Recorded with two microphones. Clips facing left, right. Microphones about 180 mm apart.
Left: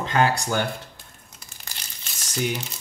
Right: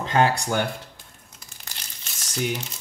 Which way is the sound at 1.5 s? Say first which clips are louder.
Left 1 dB; 5° left (ahead or behind).